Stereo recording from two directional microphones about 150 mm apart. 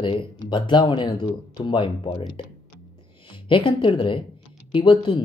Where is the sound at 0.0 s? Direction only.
35° left (ahead or behind).